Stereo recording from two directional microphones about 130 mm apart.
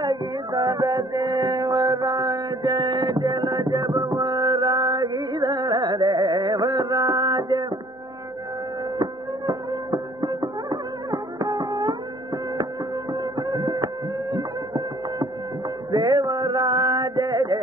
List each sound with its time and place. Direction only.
0.0 s music: 30° right (ahead or behind)
8.9 s music: 30° right (ahead or behind)
13.1 s music: 30° right (ahead or behind)
15.9 s a sound: 30° right (ahead or behind)